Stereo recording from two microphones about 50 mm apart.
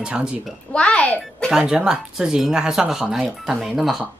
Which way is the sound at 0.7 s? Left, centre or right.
Left.